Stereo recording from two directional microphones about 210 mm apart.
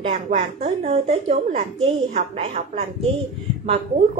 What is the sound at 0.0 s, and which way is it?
Speech, 30° right (ahead or behind).